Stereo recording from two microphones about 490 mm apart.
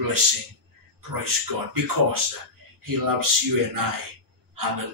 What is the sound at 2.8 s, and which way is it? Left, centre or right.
Speech, right.